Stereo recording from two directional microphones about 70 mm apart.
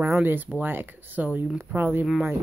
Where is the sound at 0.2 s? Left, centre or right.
Right.